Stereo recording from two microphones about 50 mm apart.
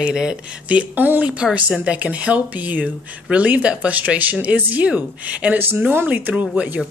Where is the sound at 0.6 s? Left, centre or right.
Right.